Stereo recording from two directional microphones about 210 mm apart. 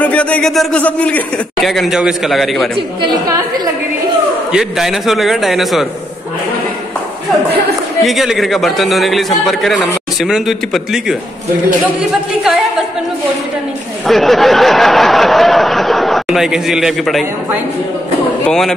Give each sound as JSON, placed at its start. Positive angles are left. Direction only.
{"t": 0.0, "sound": "speech", "side_deg": 5}
{"t": 3.0, "sound": "a woman's voice", "side_deg": -20}
{"t": 4.5, "sound": "speech", "side_deg": 0}
{"t": 8.0, "sound": "speech", "side_deg": 0}
{"t": 14.0, "sound": "speech", "side_deg": 0}